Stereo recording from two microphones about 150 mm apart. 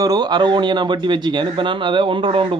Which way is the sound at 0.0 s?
25° right (ahead or behind).